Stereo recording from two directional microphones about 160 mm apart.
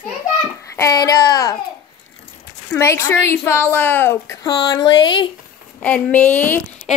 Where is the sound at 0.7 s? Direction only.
20° left (ahead or behind).